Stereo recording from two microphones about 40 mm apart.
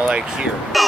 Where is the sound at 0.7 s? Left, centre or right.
Centre.